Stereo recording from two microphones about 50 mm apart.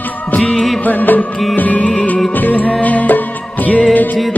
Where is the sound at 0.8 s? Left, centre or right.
Left.